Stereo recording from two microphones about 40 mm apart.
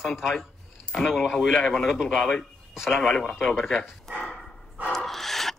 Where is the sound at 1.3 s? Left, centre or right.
Centre.